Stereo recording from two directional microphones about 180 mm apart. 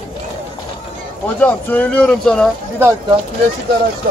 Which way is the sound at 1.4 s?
10° left (ahead or behind).